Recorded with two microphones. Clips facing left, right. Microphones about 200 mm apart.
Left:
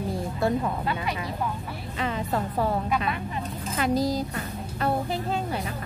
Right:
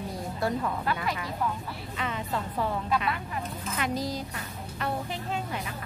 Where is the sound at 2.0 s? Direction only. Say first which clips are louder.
Left 5 dB; 35° left (ahead or behind).